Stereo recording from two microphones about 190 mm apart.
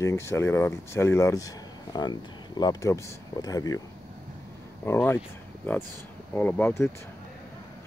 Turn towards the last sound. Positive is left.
turn(degrees=10)  # may be behind; listen again after turning